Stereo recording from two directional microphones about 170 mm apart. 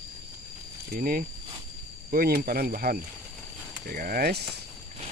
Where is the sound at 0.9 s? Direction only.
55° right (ahead or behind).